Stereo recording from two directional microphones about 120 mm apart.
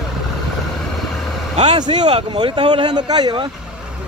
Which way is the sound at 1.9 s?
65° right (ahead or behind).